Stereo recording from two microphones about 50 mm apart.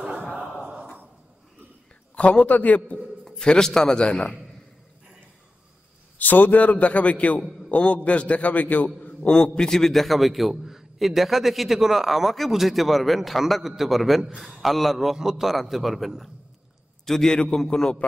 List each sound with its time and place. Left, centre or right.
0.0 s a sound: centre
2.4 s a man's voice: left
3.3 s a man's voice: centre
6.1 s a man's voice: left
9.6 s a man's voice: centre